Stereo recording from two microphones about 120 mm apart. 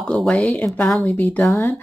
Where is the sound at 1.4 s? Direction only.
25° left (ahead or behind).